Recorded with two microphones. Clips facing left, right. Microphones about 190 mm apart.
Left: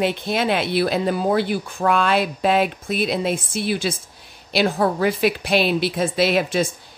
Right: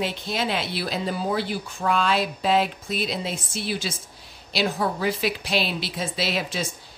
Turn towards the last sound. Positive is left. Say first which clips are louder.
# left 8 dB
turn(degrees=55)  # may be behind; listen again after turning